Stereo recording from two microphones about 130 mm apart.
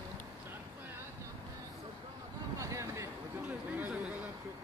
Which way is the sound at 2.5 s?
25° right (ahead or behind).